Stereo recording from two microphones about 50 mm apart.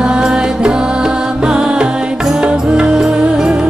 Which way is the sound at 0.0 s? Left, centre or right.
Centre.